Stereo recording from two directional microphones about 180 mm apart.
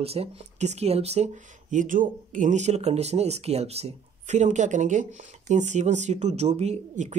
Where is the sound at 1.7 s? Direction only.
45° right (ahead or behind).